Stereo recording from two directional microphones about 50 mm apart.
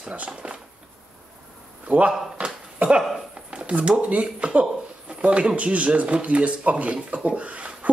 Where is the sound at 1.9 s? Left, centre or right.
Right.